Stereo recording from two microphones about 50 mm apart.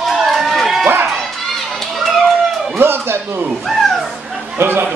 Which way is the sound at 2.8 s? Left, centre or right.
Right.